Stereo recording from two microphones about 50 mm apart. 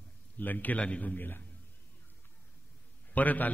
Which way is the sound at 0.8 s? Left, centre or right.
Left.